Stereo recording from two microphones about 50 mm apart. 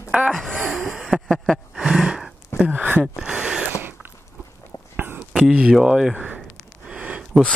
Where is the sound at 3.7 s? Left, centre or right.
Right.